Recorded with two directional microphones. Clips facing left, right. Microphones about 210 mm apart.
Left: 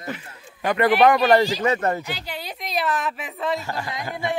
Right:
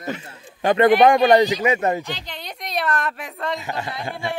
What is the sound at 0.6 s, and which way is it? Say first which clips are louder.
Speech: right 3 dB; 25° right (ahead or behind).